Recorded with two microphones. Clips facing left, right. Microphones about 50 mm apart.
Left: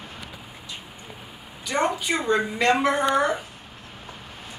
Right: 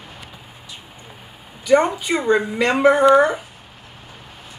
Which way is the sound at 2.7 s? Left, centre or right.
Centre.